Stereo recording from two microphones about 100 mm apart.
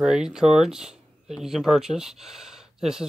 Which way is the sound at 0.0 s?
5° right (ahead or behind).